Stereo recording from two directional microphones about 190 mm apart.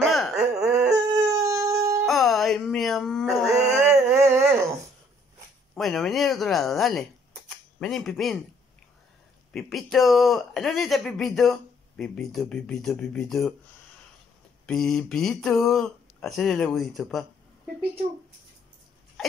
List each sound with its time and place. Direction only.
0.0 s a sound: centre (ahead or behind)
1.1 s howl: 15° right (ahead or behind)
2.0 s music: centre (ahead or behind)
3.5 s a sound: 15° right (ahead or behind)
5.8 s speech: centre (ahead or behind)
9.5 s speech: centre (ahead or behind)
14.7 s speech: centre (ahead or behind)